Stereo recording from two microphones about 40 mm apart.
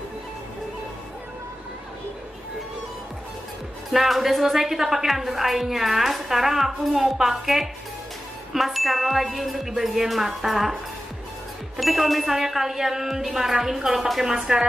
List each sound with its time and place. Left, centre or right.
3.9 s a woman's voice: centre
11.7 s music: centre
14.3 s music: centre